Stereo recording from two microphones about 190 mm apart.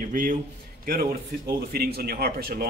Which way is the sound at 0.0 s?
45° right (ahead or behind).